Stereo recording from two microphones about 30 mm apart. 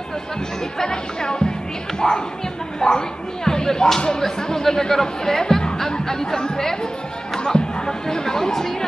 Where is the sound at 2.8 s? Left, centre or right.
Left.